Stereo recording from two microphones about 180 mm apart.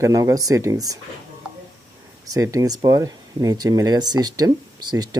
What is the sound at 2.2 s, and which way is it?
Speech, 20° right (ahead or behind).